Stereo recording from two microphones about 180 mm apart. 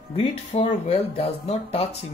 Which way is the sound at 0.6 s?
35° left (ahead or behind).